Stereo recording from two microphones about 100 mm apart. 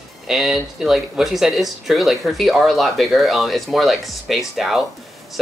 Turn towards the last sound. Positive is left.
turn(degrees=0)  # may be behind; listen again after turning